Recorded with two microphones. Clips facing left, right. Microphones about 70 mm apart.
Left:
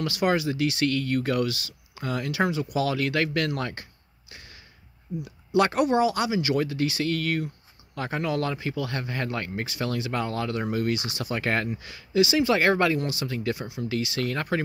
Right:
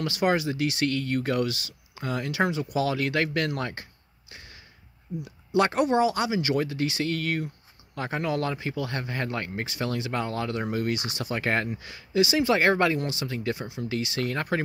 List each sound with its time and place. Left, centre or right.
0.0 s speech: right
5.6 s speech: right
10.9 s speech: right
11.3 s speech: right